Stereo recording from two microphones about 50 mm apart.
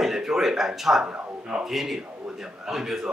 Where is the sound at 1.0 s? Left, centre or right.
Centre.